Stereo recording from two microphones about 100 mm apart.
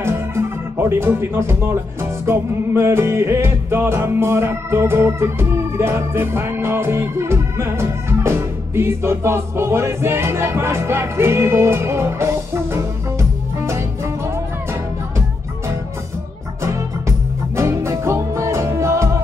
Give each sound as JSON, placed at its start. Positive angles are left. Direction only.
{"t": 0.0, "sound": "music", "side_deg": -25}
{"t": 17.6, "sound": "music", "side_deg": -25}